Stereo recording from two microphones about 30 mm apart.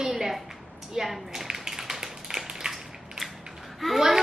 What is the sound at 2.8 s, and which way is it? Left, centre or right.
Crushing, centre.